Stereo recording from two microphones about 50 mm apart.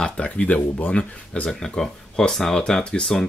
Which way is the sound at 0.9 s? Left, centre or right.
Left.